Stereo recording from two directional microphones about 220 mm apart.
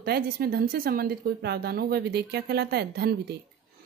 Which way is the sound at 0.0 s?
45° right (ahead or behind).